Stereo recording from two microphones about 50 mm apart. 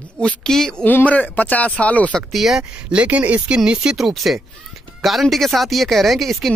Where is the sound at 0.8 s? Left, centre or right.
Left.